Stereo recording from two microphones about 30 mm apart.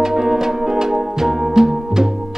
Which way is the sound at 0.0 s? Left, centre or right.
Centre.